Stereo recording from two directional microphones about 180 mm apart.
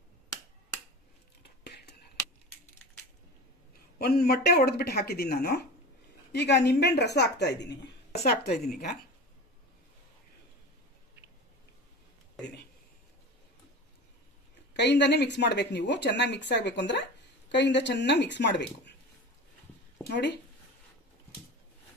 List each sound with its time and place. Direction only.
1.4 s whispering: 65° left (ahead or behind)
4.0 s a woman's voice: 60° left (ahead or behind)
14.7 s a woman's voice: 75° left (ahead or behind)
20.1 s a woman's voice: 70° left (ahead or behind)